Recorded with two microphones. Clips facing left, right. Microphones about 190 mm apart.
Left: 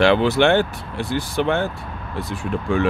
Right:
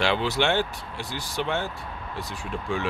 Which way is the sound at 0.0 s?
60° left (ahead or behind).